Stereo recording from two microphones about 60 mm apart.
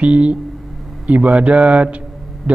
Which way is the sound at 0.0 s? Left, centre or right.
Right.